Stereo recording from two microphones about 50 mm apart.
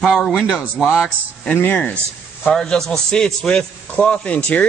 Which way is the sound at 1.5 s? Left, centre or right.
Left.